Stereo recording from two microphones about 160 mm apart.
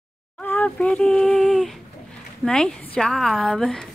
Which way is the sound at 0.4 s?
10° left (ahead or behind).